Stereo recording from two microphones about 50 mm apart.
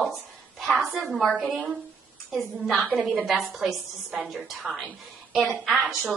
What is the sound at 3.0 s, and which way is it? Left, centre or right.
Speech, right.